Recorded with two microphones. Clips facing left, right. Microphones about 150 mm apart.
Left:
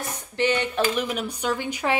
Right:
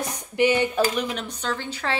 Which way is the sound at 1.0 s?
5° left (ahead or behind).